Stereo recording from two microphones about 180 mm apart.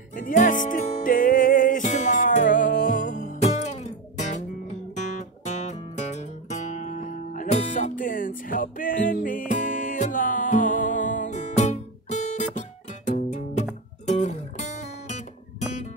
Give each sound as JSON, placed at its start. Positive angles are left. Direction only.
{"t": 0.1, "sound": "music", "side_deg": 45}